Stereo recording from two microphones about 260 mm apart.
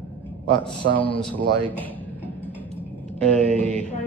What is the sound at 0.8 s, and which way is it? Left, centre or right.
Speech, right.